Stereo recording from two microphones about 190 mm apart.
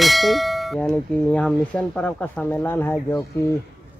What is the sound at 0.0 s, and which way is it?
Clang, centre (ahead or behind).